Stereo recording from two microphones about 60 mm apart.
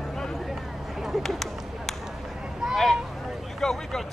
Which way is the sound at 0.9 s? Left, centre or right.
Centre.